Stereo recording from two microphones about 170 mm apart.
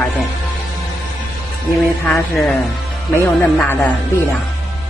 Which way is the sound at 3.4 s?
10° left (ahead or behind).